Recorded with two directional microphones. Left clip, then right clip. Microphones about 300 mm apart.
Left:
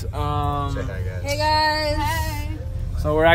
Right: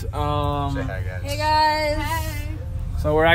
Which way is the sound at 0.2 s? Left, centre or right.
Centre.